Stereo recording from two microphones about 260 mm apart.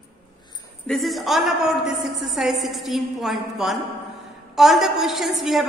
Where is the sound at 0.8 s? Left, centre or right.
Centre.